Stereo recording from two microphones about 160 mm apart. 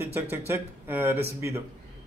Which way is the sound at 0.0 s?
15° right (ahead or behind).